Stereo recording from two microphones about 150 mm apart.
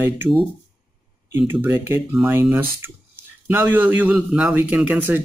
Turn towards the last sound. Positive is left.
turn(degrees=-10)  # may be behind; listen again after turning